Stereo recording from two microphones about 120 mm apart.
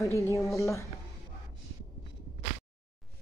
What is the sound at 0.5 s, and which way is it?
Speech, 25° left (ahead or behind).